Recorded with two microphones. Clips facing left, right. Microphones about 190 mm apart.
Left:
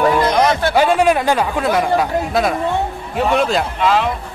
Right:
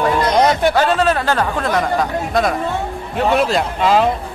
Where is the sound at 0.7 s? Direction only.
10° left (ahead or behind).